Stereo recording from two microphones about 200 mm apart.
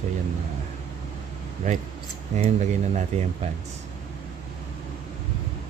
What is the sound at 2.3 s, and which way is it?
Speech, 35° right (ahead or behind).